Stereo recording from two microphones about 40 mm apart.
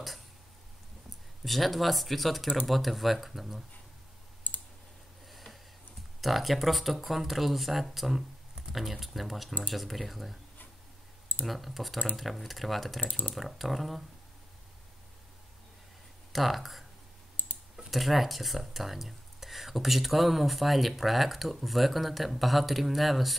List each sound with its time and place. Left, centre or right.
1.4 s speech: centre
4.4 s clicking: left
5.3 s a sound: centre
6.2 s speech: centre
8.6 s typing: right
9.0 s speech: centre
11.4 s speech: centre
13.0 s speech: left
13.3 s speech: centre
16.3 s speech: centre
17.4 s clicking: left
17.7 s speech: centre